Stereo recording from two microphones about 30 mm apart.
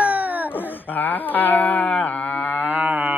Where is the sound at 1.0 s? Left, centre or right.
Left.